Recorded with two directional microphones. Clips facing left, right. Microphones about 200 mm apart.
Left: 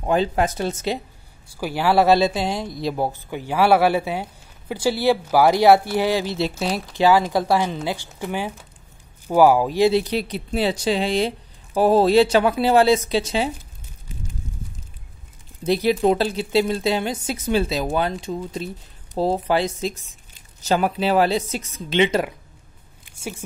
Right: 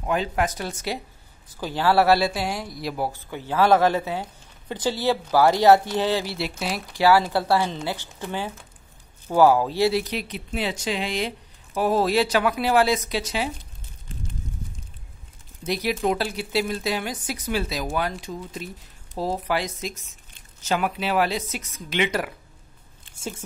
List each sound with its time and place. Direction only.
0.0 s speech: 30° left (ahead or behind)
1.5 s speech: 10° left (ahead or behind); by 13.5 s 25° left (ahead or behind)
15.6 s speech: 30° left (ahead or behind)
23.0 s a sound: 10° left (ahead or behind)